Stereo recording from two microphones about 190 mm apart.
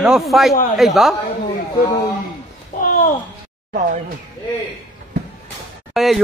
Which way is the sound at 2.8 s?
45° left (ahead or behind).